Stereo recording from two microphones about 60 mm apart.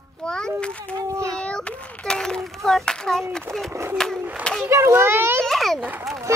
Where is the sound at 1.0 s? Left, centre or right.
Right.